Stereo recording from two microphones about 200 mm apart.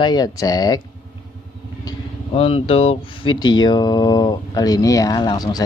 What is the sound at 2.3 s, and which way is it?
Speech, 30° left (ahead or behind).